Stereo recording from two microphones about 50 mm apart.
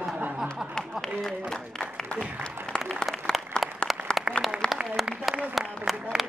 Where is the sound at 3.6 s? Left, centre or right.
Centre.